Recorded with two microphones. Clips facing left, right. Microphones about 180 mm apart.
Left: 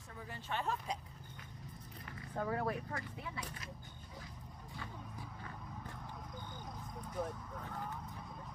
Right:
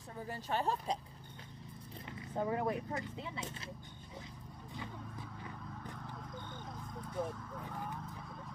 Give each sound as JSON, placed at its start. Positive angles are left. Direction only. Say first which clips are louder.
{"t": 0.3, "sound": "speech", "louder": "right 4 dB", "side_deg": -40}
{"t": 2.0, "sound": "speech", "louder": "right 3 dB", "side_deg": -20}